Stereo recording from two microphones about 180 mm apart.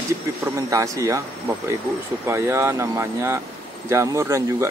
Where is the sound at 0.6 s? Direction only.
15° right (ahead or behind).